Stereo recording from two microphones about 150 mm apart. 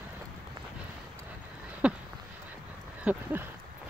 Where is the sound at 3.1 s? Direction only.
10° right (ahead or behind).